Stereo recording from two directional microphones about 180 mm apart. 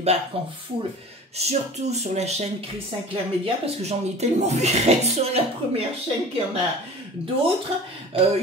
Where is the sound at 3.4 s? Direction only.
35° right (ahead or behind).